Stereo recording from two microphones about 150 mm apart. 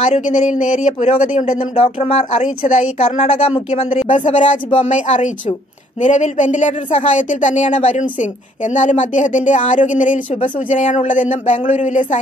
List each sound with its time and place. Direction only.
0.0 s speech: 50° left (ahead or behind)